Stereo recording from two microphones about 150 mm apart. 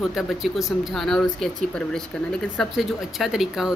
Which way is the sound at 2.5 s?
Centre (ahead or behind).